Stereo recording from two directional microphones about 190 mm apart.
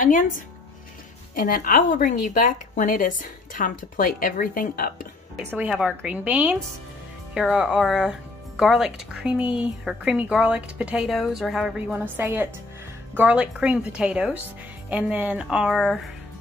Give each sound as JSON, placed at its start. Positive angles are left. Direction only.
{"t": 0.0, "sound": "a woman's voice", "side_deg": 45}
{"t": 5.5, "sound": "speech", "side_deg": -5}